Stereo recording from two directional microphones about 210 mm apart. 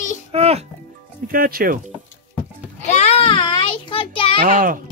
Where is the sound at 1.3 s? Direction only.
45° right (ahead or behind).